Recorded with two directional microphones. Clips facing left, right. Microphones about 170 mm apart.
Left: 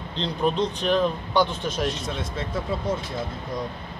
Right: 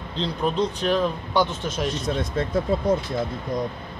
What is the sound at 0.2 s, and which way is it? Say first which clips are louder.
A man's voice: even; 5° right (ahead or behind).